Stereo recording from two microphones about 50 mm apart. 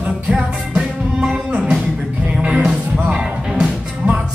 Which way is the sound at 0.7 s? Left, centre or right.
Centre.